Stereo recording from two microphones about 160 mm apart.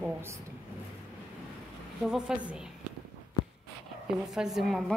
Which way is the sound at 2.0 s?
5° right (ahead or behind).